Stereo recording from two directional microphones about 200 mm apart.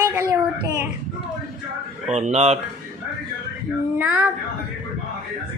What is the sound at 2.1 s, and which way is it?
Speech, 35° right (ahead or behind).